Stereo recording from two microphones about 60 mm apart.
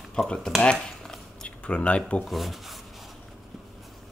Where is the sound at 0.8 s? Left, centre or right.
Centre.